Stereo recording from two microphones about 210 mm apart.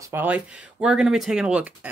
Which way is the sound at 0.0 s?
10° right (ahead or behind).